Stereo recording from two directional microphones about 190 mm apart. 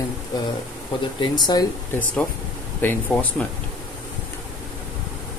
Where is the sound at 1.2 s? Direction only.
20° left (ahead or behind).